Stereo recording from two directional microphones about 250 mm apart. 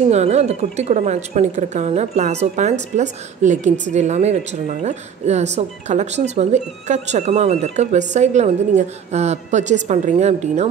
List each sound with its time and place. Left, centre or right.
0.1 s speech: right